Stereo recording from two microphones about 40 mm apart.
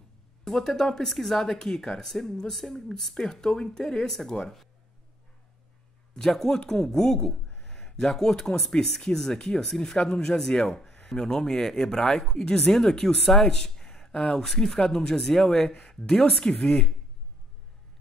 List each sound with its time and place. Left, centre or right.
0.5 s speech: centre
6.2 s speech: centre
14.4 s speech: centre
15.5 s speech: left